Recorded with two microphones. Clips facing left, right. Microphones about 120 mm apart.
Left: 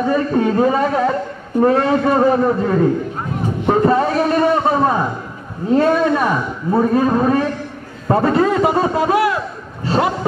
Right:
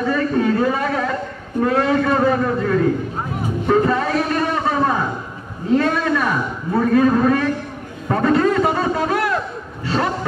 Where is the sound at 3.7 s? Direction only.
30° left (ahead or behind).